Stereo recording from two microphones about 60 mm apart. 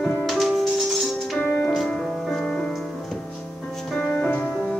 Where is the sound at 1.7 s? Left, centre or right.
Centre.